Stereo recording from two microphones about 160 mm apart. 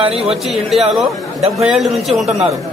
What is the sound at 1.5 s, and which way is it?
Speech, centre (ahead or behind).